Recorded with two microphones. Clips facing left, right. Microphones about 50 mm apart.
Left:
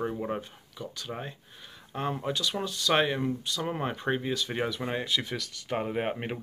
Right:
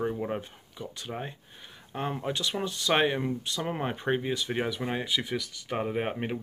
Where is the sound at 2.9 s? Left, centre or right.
Centre.